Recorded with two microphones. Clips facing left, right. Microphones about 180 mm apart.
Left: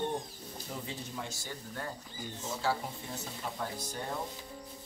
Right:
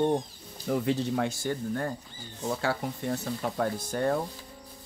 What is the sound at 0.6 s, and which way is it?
Speech, 70° right (ahead or behind).